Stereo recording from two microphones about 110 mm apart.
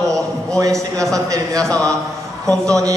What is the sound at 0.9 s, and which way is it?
Speech, 30° right (ahead or behind).